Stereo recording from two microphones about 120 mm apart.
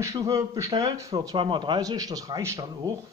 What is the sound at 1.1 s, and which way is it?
Speech, 45° right (ahead or behind).